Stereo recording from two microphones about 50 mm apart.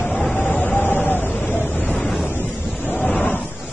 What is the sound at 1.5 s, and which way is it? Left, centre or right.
Waves, left.